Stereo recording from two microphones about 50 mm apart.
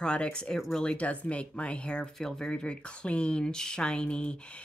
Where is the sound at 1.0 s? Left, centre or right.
Left.